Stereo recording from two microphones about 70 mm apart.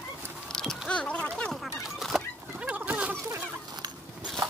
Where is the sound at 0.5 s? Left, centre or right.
Centre.